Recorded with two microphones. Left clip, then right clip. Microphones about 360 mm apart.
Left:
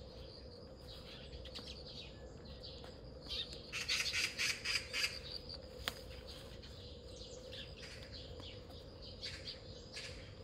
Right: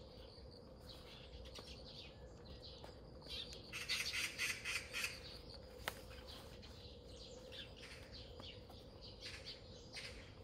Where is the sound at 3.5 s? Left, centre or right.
Centre.